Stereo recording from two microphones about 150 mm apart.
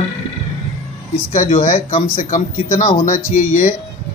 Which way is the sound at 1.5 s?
55° left (ahead or behind).